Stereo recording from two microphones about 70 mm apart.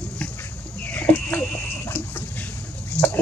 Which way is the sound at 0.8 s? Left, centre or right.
Left.